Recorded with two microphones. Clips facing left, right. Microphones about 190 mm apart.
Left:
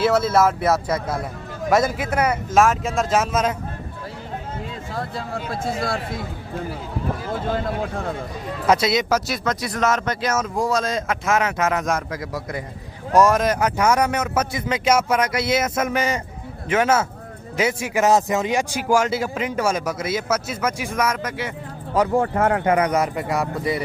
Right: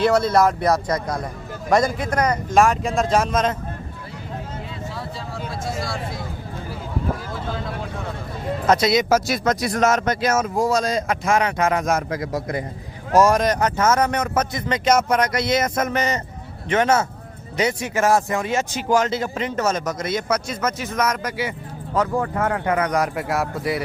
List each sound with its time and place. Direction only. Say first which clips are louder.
0.0 s speech: right 1 dB; 5° left (ahead or behind)
4.9 s speech: left 3 dB; 55° left (ahead or behind)
8.6 s speech: right 1 dB; 5° left (ahead or behind)
9.1 s speech: right 3 dB; 45° right (ahead or behind)
10.4 s speech: right 2 dB; centre (ahead or behind)
12.1 s a man's voice: right 4 dB; 20° right (ahead or behind)
13.1 s speech: even; centre (ahead or behind)
18.0 s speech: left 1 dB; 20° left (ahead or behind)
22.1 s speech: left 3 dB; 30° left (ahead or behind)
22.9 s speech: even; centre (ahead or behind)